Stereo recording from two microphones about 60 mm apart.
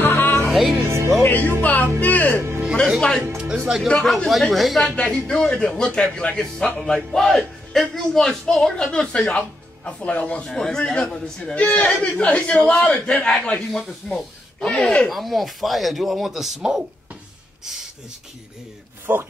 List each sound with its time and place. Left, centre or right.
0.0 s music: left
0.5 s music: centre
0.8 s speech: right
1.2 s speech: left
2.3 s a man's voice: right
3.3 s speech: centre
3.9 s speech: centre
5.0 s a man's voice: centre
6.8 s a man's voice: centre; by 10.4 s left
10.4 s a man's voice: centre
11.5 s a man's voice: left
13.7 s speech: centre
19.1 s speech: right